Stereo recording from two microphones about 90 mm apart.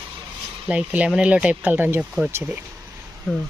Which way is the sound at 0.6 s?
15° right (ahead or behind).